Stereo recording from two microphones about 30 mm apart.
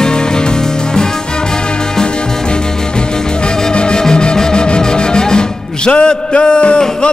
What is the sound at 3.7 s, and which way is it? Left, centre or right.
Music, left.